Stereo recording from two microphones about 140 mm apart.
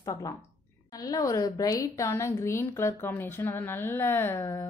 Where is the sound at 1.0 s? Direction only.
25° left (ahead or behind).